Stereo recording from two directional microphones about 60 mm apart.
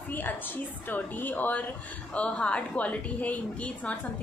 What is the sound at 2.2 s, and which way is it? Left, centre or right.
A woman's voice, centre.